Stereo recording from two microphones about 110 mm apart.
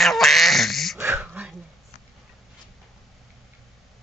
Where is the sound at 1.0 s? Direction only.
25° right (ahead or behind).